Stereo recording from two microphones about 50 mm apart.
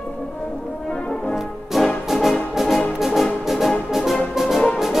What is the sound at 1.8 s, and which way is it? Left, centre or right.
Music, centre.